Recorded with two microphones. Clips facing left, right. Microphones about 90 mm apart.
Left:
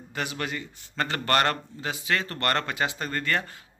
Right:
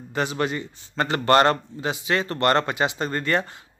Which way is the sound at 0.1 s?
30° right (ahead or behind).